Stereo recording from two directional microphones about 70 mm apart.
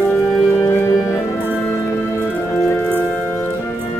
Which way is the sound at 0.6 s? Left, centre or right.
Left.